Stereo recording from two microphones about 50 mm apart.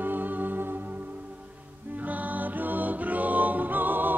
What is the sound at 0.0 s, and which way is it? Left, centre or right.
Music, right.